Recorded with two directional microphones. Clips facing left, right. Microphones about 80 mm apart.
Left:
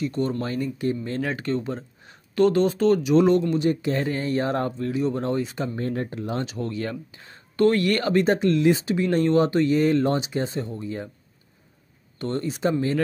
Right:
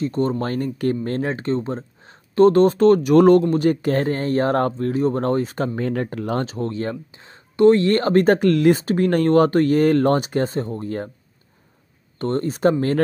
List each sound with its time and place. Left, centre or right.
0.0 s speech: right
1.2 s speech: right
2.5 s speech: right
5.8 s speech: right
6.4 s speech: right
12.2 s speech: right